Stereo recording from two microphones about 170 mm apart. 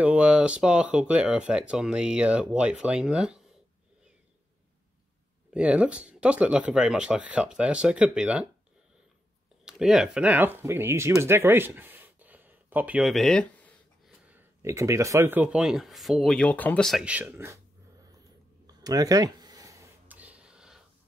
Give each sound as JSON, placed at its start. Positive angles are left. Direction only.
{"t": 0.0, "sound": "speech", "side_deg": -5}
{"t": 5.5, "sound": "speech", "side_deg": -5}
{"t": 9.7, "sound": "speech", "side_deg": -5}
{"t": 14.2, "sound": "speech", "side_deg": -15}
{"t": 18.8, "sound": "a sound", "side_deg": -20}